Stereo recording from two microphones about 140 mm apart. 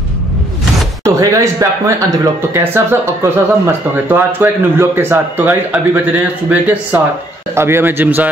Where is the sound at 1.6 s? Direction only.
20° right (ahead or behind).